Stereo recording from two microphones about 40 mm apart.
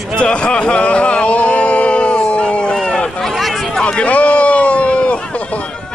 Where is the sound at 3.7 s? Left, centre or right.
Left.